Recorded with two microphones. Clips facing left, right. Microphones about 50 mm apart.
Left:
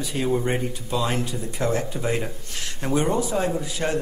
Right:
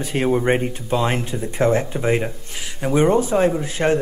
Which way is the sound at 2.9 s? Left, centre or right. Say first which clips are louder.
Right 6 dB; right.